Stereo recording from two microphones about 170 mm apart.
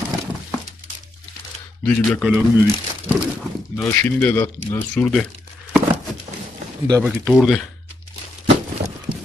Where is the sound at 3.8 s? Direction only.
15° left (ahead or behind).